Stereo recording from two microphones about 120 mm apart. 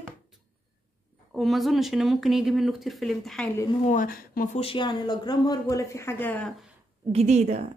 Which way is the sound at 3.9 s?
85° left.